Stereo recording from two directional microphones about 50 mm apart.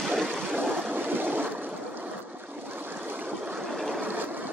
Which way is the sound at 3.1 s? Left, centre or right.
Right.